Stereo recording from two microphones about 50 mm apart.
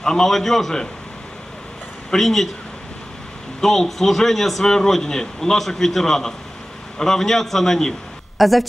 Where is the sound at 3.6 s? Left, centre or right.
Centre.